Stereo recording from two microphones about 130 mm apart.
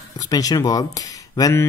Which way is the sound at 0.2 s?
30° left (ahead or behind).